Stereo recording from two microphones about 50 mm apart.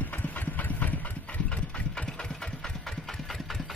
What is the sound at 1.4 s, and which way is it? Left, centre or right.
Engine, left.